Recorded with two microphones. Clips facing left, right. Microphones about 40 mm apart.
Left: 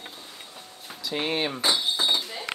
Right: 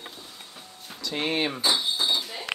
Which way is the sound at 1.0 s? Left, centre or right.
Centre.